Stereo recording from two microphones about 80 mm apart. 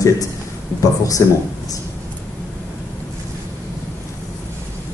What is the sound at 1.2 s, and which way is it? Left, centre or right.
Speech, left.